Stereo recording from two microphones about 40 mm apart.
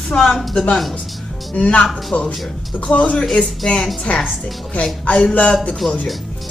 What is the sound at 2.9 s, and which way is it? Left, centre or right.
Speech, left.